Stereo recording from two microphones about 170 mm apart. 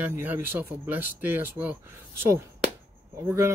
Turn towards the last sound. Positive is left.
turn(degrees=-15)  # may be behind; listen again after turning